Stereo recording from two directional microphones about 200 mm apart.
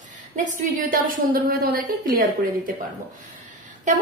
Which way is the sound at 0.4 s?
40° right (ahead or behind).